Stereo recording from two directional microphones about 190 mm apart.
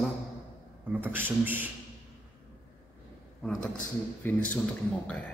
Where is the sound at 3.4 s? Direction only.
Centre (ahead or behind).